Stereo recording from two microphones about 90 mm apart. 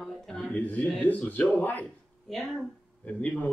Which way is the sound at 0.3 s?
15° left (ahead or behind).